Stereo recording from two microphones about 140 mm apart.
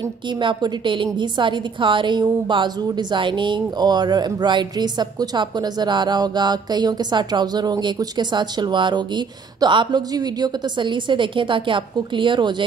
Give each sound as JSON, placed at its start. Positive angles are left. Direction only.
{"t": 0.4, "sound": "a woman's voice", "side_deg": -35}